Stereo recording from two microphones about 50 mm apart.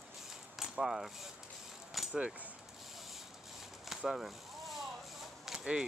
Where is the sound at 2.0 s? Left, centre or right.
Centre.